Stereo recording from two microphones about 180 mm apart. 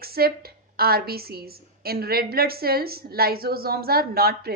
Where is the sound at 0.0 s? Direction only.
60° right (ahead or behind).